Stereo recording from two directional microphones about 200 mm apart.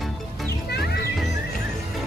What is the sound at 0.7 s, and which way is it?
Music, 55° left (ahead or behind).